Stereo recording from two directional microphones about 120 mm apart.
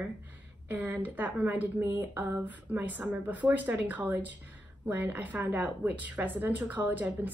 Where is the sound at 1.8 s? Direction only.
25° right (ahead or behind).